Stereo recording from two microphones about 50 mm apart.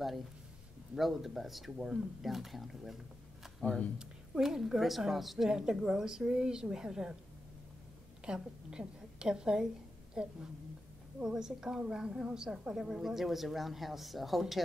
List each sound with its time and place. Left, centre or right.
0.9 s a woman's voice: centre
4.4 s a woman's voice: centre
5.5 s a woman's voice: centre
8.3 s a woman's voice: centre